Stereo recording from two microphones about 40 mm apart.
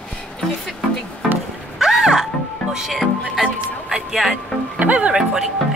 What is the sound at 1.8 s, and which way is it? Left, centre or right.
Music, centre.